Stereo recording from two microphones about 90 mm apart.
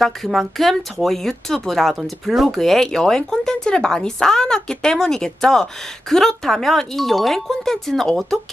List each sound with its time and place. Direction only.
0.0 s speech: centre (ahead or behind)